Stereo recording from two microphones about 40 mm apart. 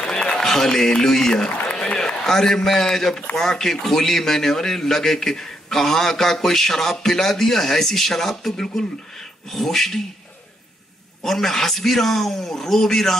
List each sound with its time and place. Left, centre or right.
0.0 s run: centre
0.5 s a man's voice: centre
11.2 s a man's voice: centre